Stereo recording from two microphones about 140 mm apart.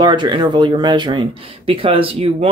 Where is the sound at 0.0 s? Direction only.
35° right (ahead or behind).